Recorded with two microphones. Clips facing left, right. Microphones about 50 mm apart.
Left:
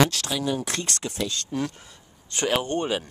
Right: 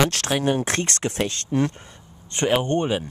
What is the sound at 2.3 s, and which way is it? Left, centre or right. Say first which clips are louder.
Speech: right 3 dB; right.